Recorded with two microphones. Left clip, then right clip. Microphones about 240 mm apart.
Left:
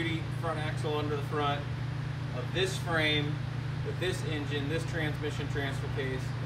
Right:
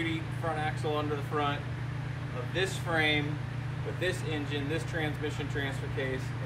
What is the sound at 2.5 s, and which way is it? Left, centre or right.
Speech, centre.